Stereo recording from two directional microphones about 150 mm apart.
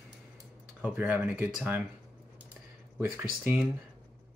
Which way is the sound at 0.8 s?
10° right (ahead or behind).